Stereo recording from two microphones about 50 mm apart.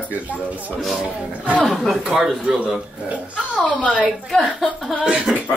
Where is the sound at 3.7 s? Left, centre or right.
Left.